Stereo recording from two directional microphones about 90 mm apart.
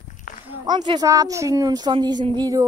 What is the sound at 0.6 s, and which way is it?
Speech, 55° right (ahead or behind).